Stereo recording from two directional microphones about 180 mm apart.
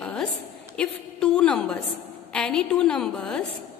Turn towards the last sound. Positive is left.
turn(degrees=5)  # may be behind; listen again after turning